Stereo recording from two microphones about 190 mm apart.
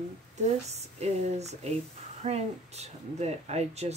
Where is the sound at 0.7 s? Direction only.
35° right (ahead or behind).